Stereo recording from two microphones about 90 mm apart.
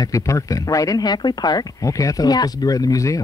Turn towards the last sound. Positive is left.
turn(degrees=40)  # may be behind; listen again after turning